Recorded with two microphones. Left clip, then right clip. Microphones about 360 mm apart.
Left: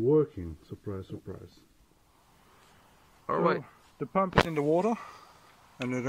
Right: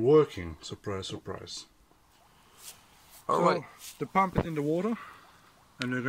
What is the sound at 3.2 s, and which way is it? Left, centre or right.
Speech, centre.